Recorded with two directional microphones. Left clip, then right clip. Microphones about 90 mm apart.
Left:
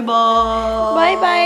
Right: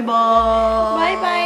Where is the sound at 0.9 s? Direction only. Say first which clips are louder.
Left 4 dB; 35° left (ahead or behind).